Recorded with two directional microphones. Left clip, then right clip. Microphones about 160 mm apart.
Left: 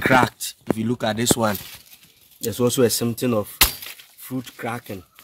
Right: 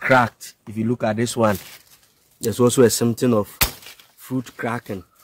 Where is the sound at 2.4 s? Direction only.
90° right; by 5.0 s 60° right (ahead or behind).